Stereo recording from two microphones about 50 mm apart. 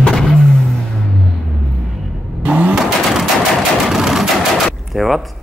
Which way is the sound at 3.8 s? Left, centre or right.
Centre.